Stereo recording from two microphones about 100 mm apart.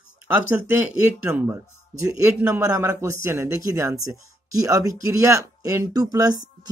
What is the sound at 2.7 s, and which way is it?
Speech, 25° right (ahead or behind).